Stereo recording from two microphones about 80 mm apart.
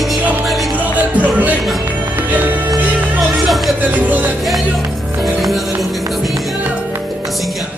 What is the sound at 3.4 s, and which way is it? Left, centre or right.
Music, centre.